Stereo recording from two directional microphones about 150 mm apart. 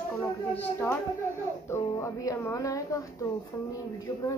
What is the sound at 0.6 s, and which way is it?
Speech, 15° left (ahead or behind).